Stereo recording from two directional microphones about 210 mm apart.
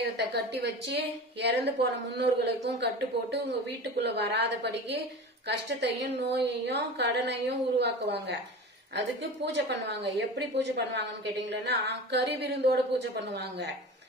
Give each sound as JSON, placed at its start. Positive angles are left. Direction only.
{"t": 0.0, "sound": "a woman's voice", "side_deg": -50}